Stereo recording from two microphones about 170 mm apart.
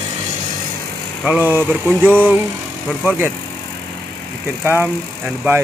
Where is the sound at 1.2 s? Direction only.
10° right (ahead or behind).